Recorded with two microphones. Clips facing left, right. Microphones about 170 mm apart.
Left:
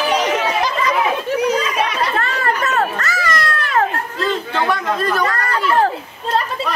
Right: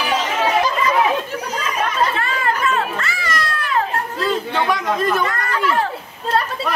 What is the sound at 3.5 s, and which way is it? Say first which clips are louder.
Children playing: even; 70° left (ahead or behind).